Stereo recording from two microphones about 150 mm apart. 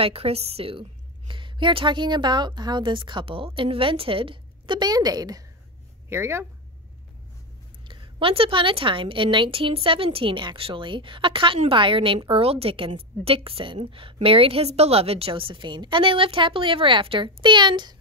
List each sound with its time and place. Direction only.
0.0 s a woman's voice: 40° right (ahead or behind); by 6.4 s 15° right (ahead or behind)
7.9 s a woman's voice: 35° right (ahead or behind)